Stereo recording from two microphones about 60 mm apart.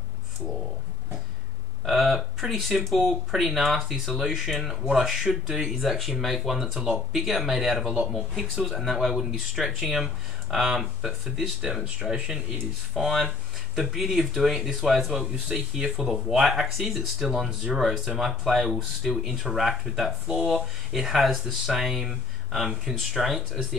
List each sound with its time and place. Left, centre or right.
1.9 s speech: centre
7.8 s speech: right
8.6 s speech: centre
11.8 s speech: centre